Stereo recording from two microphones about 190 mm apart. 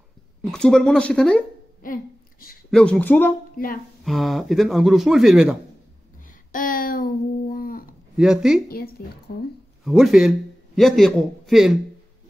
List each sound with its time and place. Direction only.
0.5 s speech: 5° left (ahead or behind)
1.8 s speech: 45° left (ahead or behind)
2.7 s speech: 5° left (ahead or behind)
6.5 s a sound: 45° left (ahead or behind)
8.2 s speech: 5° right (ahead or behind)
8.6 s speech: 50° left (ahead or behind)
9.8 s speech: centre (ahead or behind)